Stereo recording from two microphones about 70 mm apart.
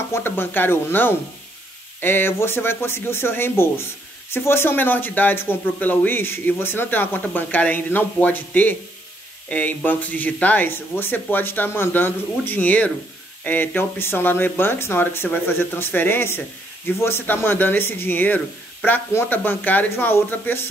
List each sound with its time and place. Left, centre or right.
0.1 s speech: left